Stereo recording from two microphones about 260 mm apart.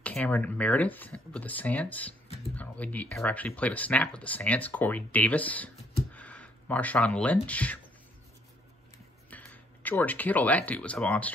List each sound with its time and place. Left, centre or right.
0.0 s speech: centre
6.1 s a sound: centre
7.4 s speech: centre
9.3 s speech: centre